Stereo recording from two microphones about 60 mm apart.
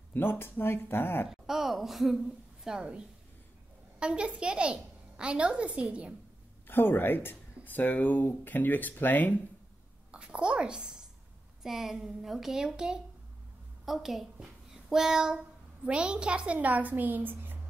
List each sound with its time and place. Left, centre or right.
0.1 s speech: left
1.3 s a woman's voice: centre
6.7 s speech: left
10.1 s a woman's voice: centre; by 17.6 s right